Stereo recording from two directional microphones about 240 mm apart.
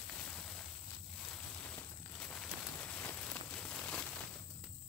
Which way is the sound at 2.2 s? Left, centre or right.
Centre.